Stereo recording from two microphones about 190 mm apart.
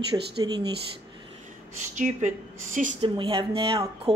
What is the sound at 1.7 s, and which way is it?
Speech, 40° right (ahead or behind).